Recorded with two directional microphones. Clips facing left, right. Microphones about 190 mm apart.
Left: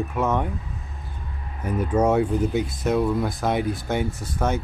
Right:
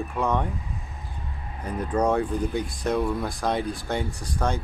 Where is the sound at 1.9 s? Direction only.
5° left (ahead or behind).